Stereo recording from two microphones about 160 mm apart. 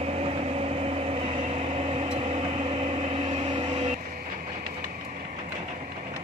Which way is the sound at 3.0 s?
40° right (ahead or behind).